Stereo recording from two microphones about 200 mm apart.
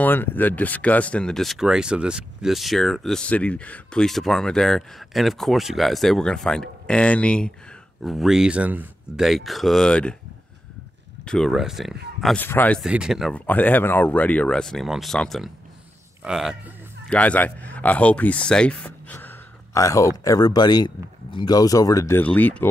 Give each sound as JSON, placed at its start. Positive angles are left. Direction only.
{"t": 0.0, "sound": "speech", "side_deg": 10}
{"t": 11.2, "sound": "speech", "side_deg": 0}
{"t": 12.8, "sound": "a man's voice", "side_deg": -5}